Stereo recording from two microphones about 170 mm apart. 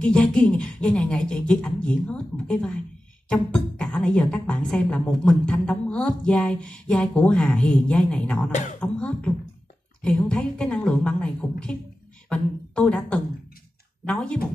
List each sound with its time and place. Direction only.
0.0 s a woman's voice: 5° left (ahead or behind)
8.5 s speech: 45° left (ahead or behind)
8.7 s a woman's voice: 5° left (ahead or behind)